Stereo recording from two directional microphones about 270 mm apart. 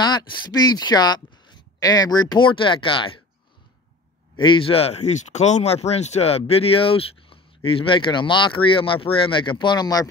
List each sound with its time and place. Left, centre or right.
0.0 s speech: centre
4.4 s speech: centre